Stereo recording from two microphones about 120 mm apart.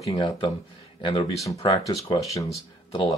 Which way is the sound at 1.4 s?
30° left (ahead or behind).